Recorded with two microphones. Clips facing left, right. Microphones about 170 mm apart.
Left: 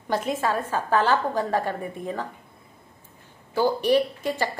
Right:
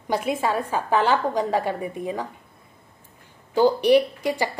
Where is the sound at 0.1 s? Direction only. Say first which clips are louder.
Right 1 dB; 10° right (ahead or behind).